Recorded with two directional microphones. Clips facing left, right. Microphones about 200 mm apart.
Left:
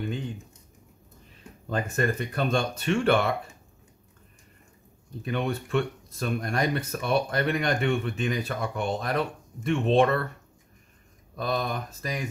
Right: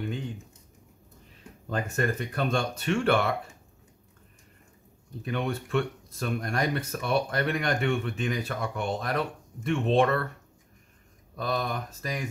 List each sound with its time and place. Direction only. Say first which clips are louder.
1.7 s speech: left 2 dB; 25° left (ahead or behind)
5.2 s speech: left 2 dB; 20° left (ahead or behind)
11.3 s speech: left 1 dB; 20° left (ahead or behind)